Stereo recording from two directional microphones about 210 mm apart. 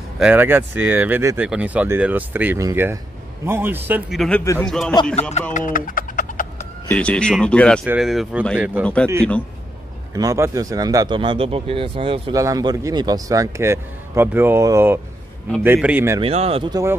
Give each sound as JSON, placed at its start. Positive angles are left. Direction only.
{"t": 0.2, "sound": "speech", "side_deg": -10}
{"t": 5.5, "sound": "a sound", "side_deg": 40}
{"t": 6.9, "sound": "speech", "side_deg": 5}
{"t": 8.8, "sound": "speech", "side_deg": 5}
{"t": 10.1, "sound": "speech", "side_deg": -15}
{"t": 16.2, "sound": "speech", "side_deg": -30}